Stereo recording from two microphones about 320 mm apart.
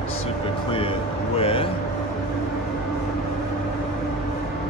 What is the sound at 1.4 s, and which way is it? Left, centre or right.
Vehicle, centre.